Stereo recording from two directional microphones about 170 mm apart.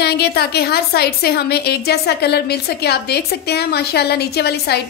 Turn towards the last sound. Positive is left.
turn(degrees=70)  # may be behind; listen again after turning